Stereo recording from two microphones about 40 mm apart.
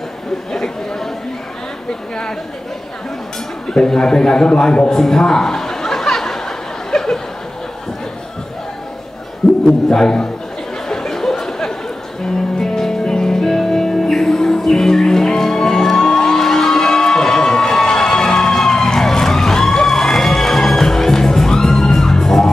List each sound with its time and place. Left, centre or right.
0.5 s speech: centre
3.6 s a man's voice: centre
4.9 s chuckle: centre
9.7 s a man's voice: centre
10.9 s a sound: centre
12.5 s music: centre